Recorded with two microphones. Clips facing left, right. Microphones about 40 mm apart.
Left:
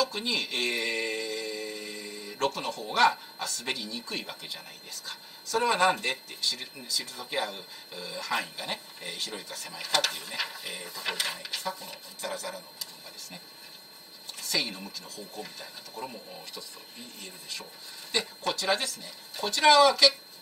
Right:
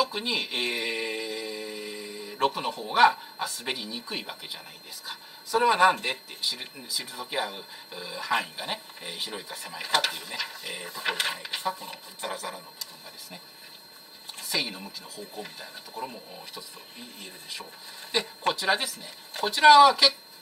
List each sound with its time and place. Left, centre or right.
0.0 s speech: centre
10.3 s speech: centre
10.7 s speech: centre
14.4 s speech: centre